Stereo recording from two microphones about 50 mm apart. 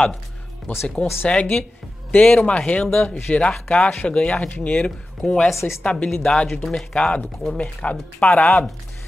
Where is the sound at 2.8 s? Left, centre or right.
Centre.